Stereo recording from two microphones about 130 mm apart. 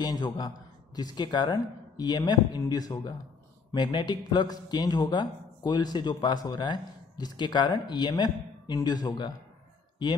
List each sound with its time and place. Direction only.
0.0 s speech: 30° left (ahead or behind)